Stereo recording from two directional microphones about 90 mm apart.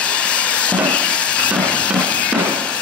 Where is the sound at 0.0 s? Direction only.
15° left (ahead or behind).